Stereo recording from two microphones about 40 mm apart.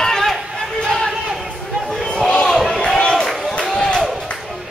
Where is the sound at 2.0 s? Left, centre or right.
Centre.